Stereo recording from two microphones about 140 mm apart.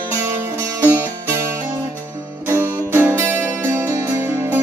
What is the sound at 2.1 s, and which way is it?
Music, 20° right (ahead or behind).